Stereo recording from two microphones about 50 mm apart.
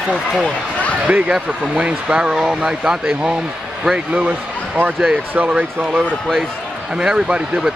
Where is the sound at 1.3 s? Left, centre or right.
Right.